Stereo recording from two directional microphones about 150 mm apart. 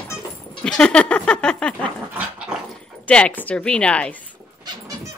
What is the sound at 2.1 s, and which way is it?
Dog, 5° right (ahead or behind).